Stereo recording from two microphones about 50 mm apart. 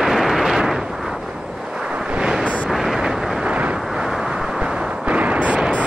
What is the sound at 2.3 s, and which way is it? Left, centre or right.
Vehicle, centre.